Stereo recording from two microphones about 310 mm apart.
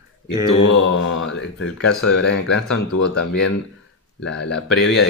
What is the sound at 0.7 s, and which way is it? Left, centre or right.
Speech, left.